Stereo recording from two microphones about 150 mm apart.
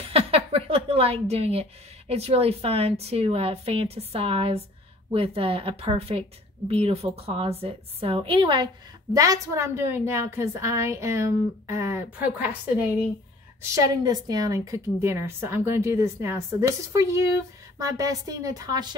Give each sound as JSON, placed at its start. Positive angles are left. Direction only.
{"t": 0.1, "sound": "a woman's voice", "side_deg": -40}
{"t": 9.1, "sound": "a woman's voice", "side_deg": -20}
{"t": 14.0, "sound": "a woman's voice", "side_deg": -25}